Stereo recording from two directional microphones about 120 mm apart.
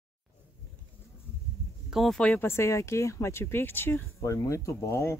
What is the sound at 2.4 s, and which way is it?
Speech, 20° left (ahead or behind).